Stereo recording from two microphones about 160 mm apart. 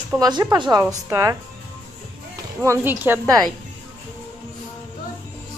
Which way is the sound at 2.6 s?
15° right (ahead or behind).